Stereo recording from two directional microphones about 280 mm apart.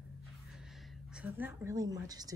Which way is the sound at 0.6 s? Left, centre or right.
Centre.